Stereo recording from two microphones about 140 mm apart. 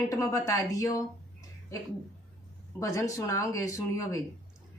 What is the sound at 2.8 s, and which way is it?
Speech, 25° left (ahead or behind).